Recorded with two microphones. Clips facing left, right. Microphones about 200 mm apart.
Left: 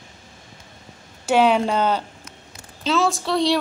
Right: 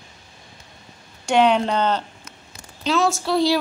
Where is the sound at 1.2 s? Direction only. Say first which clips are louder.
Even; 5° left (ahead or behind).